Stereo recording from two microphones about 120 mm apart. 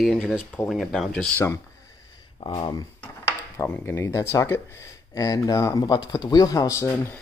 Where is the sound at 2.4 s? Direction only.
45° left (ahead or behind).